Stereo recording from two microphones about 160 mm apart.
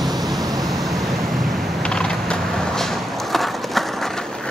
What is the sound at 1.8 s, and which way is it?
Mechanisms, 5° left (ahead or behind).